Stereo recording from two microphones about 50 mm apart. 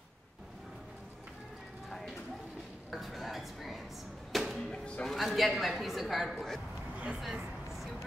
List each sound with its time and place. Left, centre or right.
1.9 s clip-clop: centre
2.9 s a sound: centre
4.3 s music: centre
4.6 s music: centre
5.0 s speech: centre
7.2 s a sound: centre